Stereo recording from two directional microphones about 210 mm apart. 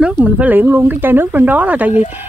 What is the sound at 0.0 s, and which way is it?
Speech, 5° right (ahead or behind).